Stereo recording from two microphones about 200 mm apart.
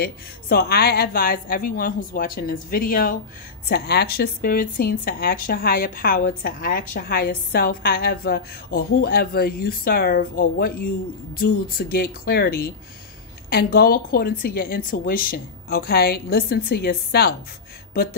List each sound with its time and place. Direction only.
0.0 s speech: 50° left (ahead or behind)